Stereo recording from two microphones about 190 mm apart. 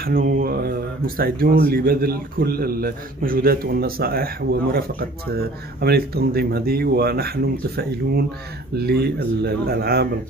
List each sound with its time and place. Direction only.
0.0 s speech: 50° right (ahead or behind)